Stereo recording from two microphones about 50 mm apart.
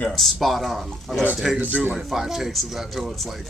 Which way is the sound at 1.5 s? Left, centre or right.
Right.